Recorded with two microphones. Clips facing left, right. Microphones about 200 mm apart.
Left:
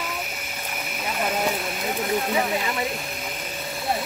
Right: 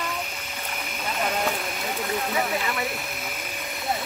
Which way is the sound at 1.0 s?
10° left (ahead or behind).